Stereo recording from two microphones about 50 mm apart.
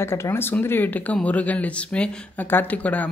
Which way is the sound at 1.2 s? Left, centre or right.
Left.